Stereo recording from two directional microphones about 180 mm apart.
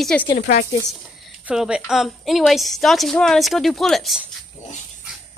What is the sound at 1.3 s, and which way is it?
A woman's voice, 5° right (ahead or behind).